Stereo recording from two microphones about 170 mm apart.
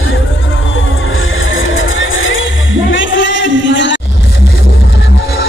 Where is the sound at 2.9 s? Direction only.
90° left.